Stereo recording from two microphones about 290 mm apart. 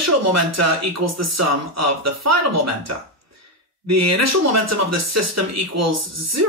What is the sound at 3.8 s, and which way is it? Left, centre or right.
Speech, right.